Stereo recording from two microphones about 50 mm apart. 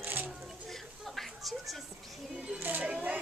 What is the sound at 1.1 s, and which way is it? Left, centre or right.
Music, centre.